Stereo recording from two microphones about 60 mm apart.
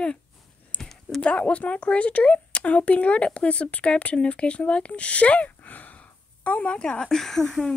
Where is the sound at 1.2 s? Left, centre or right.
Left.